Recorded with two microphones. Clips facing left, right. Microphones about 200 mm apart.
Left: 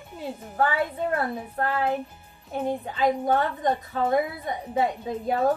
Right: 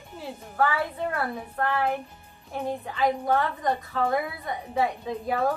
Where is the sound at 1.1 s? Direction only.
20° left (ahead or behind).